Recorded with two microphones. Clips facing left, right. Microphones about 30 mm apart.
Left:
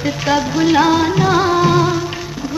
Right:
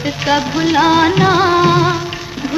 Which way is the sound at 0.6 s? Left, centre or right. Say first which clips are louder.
Left 1 dB; centre.